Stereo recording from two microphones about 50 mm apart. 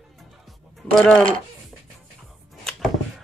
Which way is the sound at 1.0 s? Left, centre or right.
Left.